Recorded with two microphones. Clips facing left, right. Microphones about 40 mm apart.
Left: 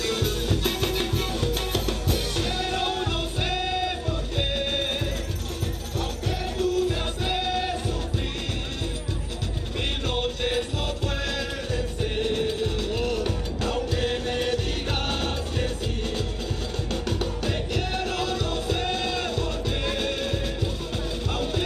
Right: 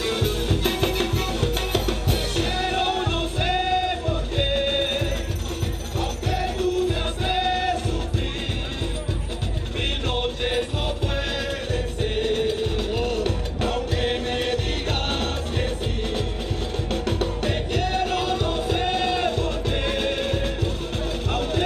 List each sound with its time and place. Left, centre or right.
0.0 s music: right
6.9 s music: right
10.1 s music: centre
12.0 s music: right
16.9 s music: right
17.8 s music: right